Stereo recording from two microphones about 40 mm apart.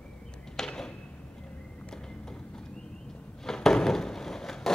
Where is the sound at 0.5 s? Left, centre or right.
Centre.